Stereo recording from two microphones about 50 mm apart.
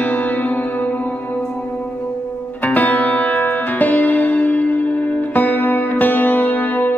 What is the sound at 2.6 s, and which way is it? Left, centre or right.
Music, left.